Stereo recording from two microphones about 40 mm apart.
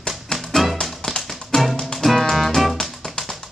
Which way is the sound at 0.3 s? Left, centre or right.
Centre.